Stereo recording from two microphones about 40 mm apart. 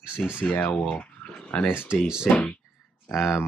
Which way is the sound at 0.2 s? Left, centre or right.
Left.